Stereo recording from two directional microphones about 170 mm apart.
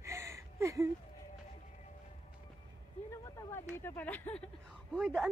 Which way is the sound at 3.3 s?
15° left (ahead or behind).